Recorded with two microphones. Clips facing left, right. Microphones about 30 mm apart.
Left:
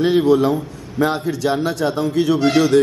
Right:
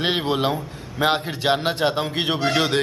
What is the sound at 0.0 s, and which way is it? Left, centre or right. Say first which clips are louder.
A man's voice: left 7 dB; right.